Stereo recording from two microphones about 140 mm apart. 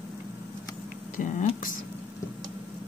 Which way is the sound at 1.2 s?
65° left (ahead or behind).